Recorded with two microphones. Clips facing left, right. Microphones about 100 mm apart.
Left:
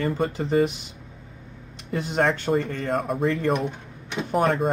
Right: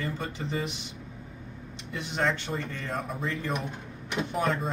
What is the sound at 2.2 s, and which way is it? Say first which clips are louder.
Speech: left 7 dB; 50° left (ahead or behind).